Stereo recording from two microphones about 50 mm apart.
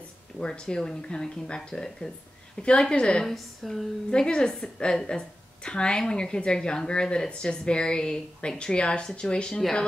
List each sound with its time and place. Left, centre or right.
0.4 s a woman's voice: centre
3.3 s a woman's voice: centre
4.1 s a woman's voice: centre